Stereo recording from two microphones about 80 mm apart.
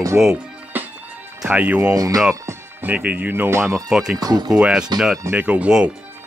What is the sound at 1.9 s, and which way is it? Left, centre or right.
Speech, right.